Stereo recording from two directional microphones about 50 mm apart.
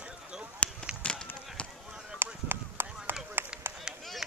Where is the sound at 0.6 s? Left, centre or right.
Centre.